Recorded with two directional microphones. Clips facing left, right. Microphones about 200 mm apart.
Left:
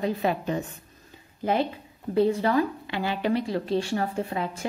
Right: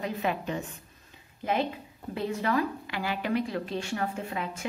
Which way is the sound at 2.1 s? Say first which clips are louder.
Left 7 dB; 35° left (ahead or behind).